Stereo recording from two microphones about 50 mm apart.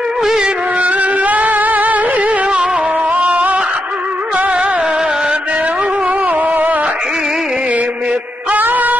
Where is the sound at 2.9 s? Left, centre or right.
Right.